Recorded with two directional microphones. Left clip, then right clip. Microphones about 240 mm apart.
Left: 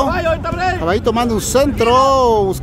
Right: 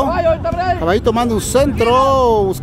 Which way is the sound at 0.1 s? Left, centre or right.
Left.